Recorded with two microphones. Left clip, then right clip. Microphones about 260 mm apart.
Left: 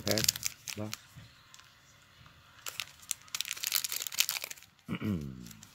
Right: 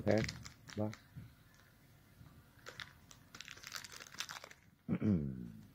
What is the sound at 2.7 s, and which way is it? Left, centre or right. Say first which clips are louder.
Crumpling: left 11 dB; left.